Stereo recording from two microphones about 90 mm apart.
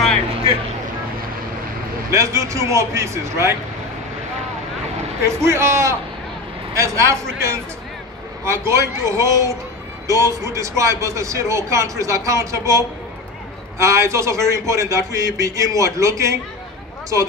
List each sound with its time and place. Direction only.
2.0 s a man's voice: 35° right (ahead or behind)
5.2 s a man's voice: 30° right (ahead or behind)